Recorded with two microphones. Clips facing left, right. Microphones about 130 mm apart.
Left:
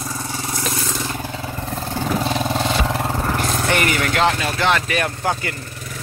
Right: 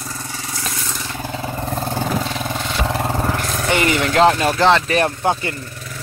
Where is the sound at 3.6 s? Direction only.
20° right (ahead or behind).